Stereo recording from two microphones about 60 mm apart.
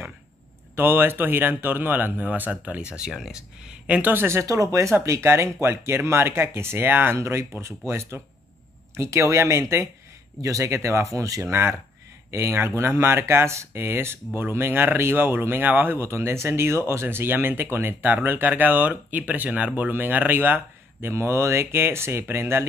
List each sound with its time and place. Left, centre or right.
0.7 s speech: right; by 4.0 s centre
4.0 s speech: right
4.7 s speech: right
7.2 s speech: right
10.4 s speech: right
12.3 s speech: right
16.0 s speech: right
21.1 s speech: right